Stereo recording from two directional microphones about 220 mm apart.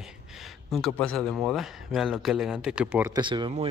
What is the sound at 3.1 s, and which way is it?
Speech, 20° right (ahead or behind).